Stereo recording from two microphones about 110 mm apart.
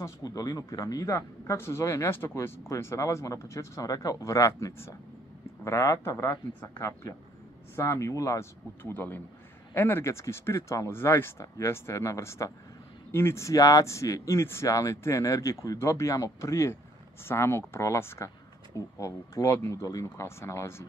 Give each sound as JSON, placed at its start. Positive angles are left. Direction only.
{"t": 0.0, "sound": "speech", "side_deg": 35}